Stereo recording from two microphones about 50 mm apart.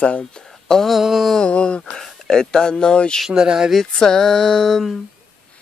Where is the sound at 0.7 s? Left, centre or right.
Centre.